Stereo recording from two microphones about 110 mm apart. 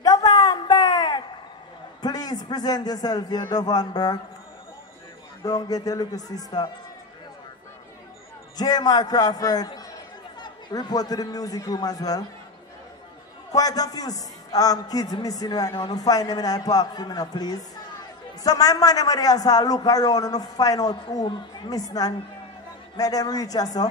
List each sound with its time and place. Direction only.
0.0 s a sound: 35° left (ahead or behind)
2.0 s a man's voice: 35° left (ahead or behind)
5.4 s a man's voice: 35° left (ahead or behind)
8.5 s a man's voice: 35° left (ahead or behind)
13.5 s a man's voice: 35° left (ahead or behind)